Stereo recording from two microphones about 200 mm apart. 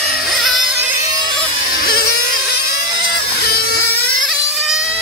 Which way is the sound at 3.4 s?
50° left (ahead or behind).